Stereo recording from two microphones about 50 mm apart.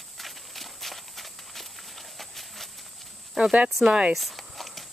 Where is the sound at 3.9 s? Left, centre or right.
Centre.